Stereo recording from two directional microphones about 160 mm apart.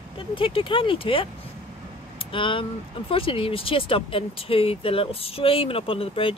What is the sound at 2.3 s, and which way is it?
Speech, 30° left (ahead or behind).